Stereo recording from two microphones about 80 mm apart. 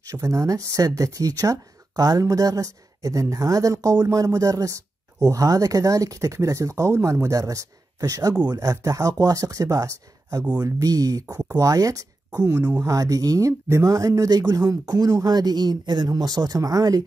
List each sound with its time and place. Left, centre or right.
0.0 s speech: right
8.5 s speech: right
12.4 s speech: right
12.8 s speech: right
15.2 s speech: right